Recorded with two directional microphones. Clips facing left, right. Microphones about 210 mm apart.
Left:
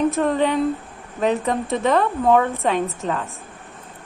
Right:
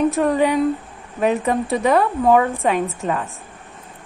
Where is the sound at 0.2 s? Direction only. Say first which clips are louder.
Right 2 dB; 10° right (ahead or behind).